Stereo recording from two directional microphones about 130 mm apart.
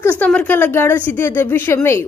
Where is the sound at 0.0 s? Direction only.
10° left (ahead or behind).